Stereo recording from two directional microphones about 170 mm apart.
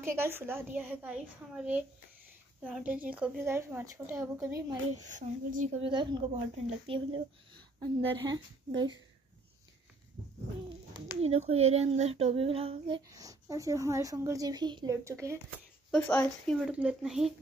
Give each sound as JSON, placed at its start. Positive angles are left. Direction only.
{"t": 0.0, "sound": "a child's voice", "side_deg": -15}
{"t": 5.0, "sound": "speech", "side_deg": -45}
{"t": 5.8, "sound": "a woman's voice", "side_deg": -30}
{"t": 11.1, "sound": "speech", "side_deg": -40}
{"t": 13.1, "sound": "a woman's voice", "side_deg": -20}
{"t": 15.9, "sound": "speech", "side_deg": 10}
{"t": 16.7, "sound": "speech", "side_deg": -5}